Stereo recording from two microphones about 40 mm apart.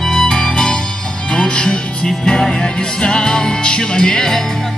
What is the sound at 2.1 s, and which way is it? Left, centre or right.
Music, centre.